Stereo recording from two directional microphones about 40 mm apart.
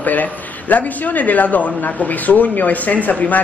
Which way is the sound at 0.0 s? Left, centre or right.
Left.